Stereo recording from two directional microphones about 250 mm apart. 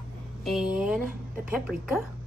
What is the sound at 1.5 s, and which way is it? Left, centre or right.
Speech, centre.